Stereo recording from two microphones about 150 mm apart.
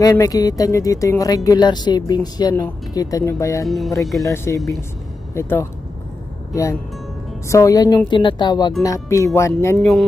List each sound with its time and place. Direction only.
0.0 s speech: 25° left (ahead or behind)
3.6 s speech: centre (ahead or behind)
4.2 s speech: 20° left (ahead or behind)